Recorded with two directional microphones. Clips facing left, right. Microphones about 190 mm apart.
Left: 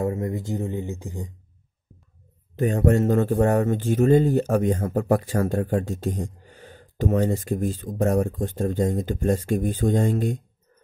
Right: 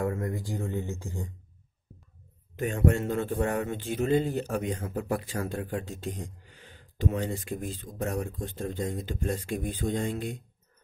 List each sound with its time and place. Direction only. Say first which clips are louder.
0.0 s speech: left 5 dB; 25° left (ahead or behind)
2.5 s a man's voice: left 6 dB; 40° left (ahead or behind)